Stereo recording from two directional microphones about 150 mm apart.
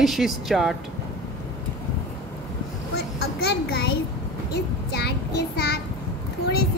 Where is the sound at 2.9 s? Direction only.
90° left.